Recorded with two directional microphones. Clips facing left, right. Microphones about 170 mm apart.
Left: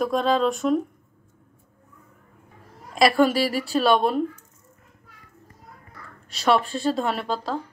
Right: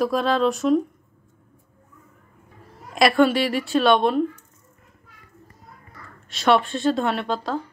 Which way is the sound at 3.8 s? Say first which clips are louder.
Right 1 dB; 5° left (ahead or behind).